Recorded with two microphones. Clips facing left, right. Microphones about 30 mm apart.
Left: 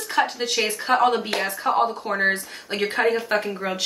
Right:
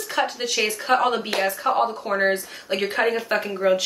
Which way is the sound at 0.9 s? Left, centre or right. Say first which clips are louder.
Left 1 dB; centre.